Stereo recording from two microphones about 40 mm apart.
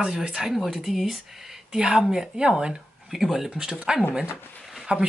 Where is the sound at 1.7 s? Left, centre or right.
Centre.